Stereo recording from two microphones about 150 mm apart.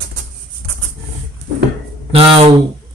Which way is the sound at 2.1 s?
40° right (ahead or behind).